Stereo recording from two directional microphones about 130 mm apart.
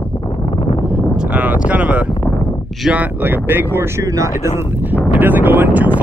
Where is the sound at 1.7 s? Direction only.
10° right (ahead or behind).